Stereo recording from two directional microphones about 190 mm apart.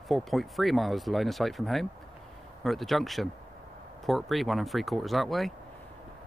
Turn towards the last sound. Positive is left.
turn(degrees=0)  # may be behind; listen again after turning